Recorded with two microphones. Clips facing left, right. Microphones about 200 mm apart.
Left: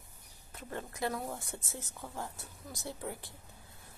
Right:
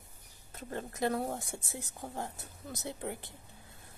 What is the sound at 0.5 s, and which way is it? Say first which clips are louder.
Speech: right 2 dB; 40° right (ahead or behind).